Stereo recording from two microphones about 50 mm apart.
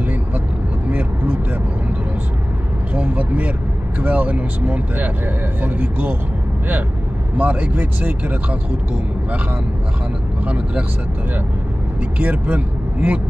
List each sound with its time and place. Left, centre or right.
0.8 s vehicle: right
2.9 s a sound: right
4.0 s speech: right
7.3 s speech: right
10.4 s speech: right
12.2 s a man's voice: right